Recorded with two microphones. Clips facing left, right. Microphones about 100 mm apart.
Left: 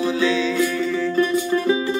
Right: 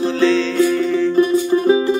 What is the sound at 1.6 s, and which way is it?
Music, 35° right (ahead or behind).